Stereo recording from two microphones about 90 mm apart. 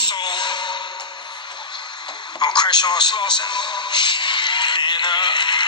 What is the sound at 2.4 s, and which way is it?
A man's voice, 55° left (ahead or behind).